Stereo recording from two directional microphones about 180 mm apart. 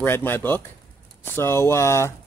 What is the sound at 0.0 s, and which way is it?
Speech, 10° left (ahead or behind).